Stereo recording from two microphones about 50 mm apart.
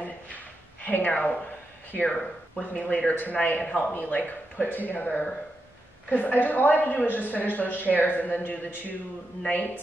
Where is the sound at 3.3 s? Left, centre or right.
Left.